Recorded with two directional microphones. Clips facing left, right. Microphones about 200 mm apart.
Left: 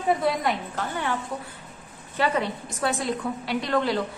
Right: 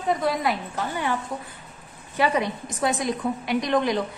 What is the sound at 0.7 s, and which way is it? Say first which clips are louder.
A woman's voice: right 2 dB; 15° right (ahead or behind).